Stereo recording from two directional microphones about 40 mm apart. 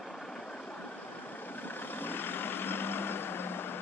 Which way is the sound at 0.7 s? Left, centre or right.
Left.